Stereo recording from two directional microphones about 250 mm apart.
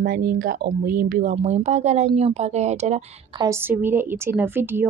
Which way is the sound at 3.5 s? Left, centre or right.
Centre.